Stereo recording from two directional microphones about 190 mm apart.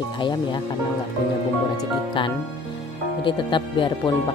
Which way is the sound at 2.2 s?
25° left (ahead or behind).